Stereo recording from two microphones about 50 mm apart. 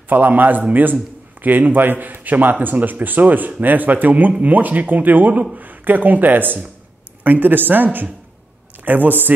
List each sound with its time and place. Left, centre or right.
0.1 s speech: right